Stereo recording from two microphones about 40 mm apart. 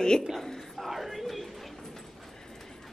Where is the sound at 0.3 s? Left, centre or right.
Centre.